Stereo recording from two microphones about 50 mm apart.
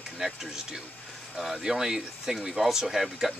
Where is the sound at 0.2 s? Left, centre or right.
Centre.